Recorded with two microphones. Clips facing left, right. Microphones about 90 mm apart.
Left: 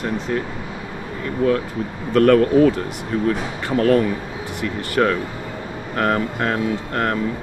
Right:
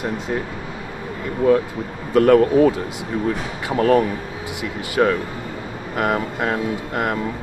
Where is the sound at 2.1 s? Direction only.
10° right (ahead or behind).